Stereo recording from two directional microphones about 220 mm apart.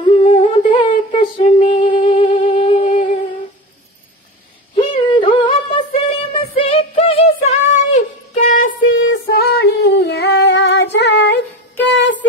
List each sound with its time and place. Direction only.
0.0 s humming: 30° left (ahead or behind)
1.1 s music: 25° left (ahead or behind)
3.0 s humming: 25° left (ahead or behind)
4.9 s a sound: 25° left (ahead or behind)
8.9 s female singing: 45° left (ahead or behind)
11.9 s a sound: 55° left (ahead or behind)